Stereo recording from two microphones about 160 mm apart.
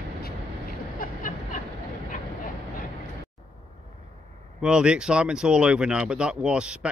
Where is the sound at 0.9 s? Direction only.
55° left (ahead or behind).